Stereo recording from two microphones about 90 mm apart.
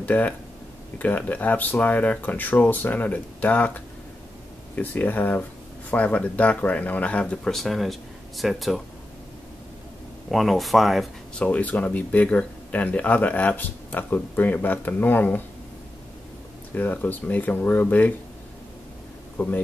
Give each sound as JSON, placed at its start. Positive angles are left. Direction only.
{"t": 0.0, "sound": "speech", "side_deg": 15}
{"t": 7.5, "sound": "speech", "side_deg": 0}
{"t": 10.3, "sound": "speech", "side_deg": 0}
{"t": 11.3, "sound": "speech", "side_deg": 15}
{"t": 16.7, "sound": "speech", "side_deg": 20}
{"t": 19.3, "sound": "speech", "side_deg": 15}